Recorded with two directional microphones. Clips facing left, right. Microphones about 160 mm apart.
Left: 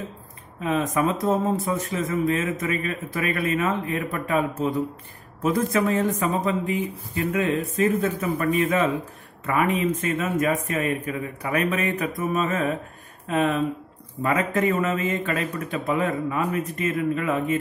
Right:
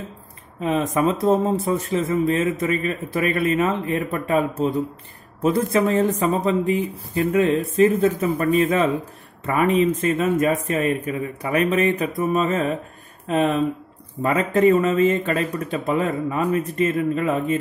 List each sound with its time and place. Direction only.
0.6 s a man's voice: 30° right (ahead or behind)